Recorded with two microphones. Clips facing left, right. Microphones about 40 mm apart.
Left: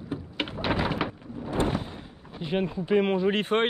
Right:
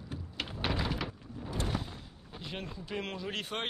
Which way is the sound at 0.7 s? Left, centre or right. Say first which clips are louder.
Left 8 dB; left.